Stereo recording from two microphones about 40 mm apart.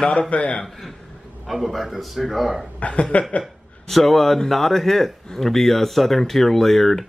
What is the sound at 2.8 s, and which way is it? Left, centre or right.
Speech, left.